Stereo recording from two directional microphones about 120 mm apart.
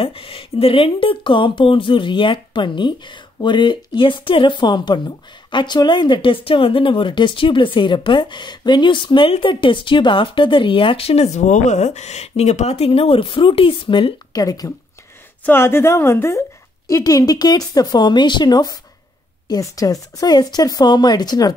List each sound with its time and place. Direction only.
0.0 s speech: 50° left (ahead or behind); by 14.7 s 30° left (ahead or behind)
15.4 s a woman's voice: 20° left (ahead or behind)